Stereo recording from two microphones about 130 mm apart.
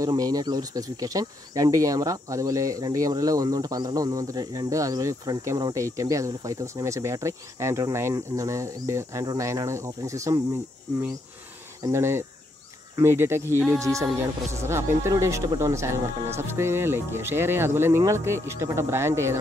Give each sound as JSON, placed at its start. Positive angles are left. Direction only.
{"t": 0.0, "sound": "speech", "side_deg": -30}
{"t": 11.8, "sound": "speech", "side_deg": -20}